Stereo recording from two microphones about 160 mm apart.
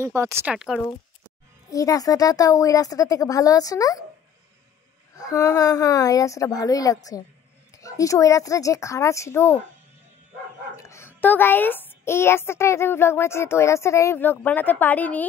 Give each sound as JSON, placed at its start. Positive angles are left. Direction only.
{"t": 0.0, "sound": "speech", "side_deg": -20}
{"t": 0.5, "sound": "speech", "side_deg": -5}
{"t": 1.7, "sound": "speech", "side_deg": 20}
{"t": 5.1, "sound": "speech", "side_deg": 20}
{"t": 10.8, "sound": "speech", "side_deg": 15}